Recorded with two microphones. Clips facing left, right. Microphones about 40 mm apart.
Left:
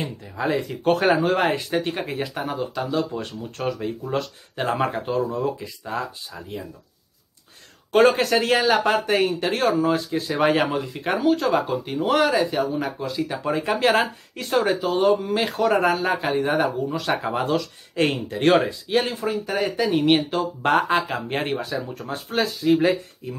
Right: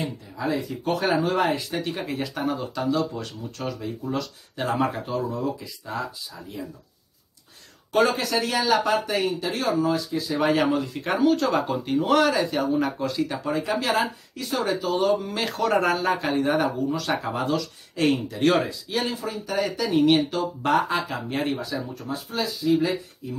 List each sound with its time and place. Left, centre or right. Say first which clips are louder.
0.0 s speech: left 2 dB; left
2.1 s speech: even; centre; by 5.9 s left
7.9 s speech: left 5 dB; left; by 13.4 s centre
13.4 s speech: left 2 dB; left
13.8 s speech: left 4 dB; left
15.3 s speech: left 3 dB; centre
17.5 s speech: left 2 dB; left